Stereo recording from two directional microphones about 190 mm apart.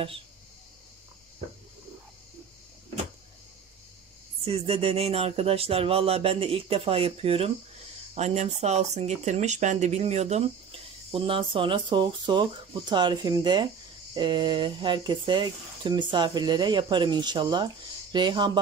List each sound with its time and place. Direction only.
4.5 s speech: 30° right (ahead or behind)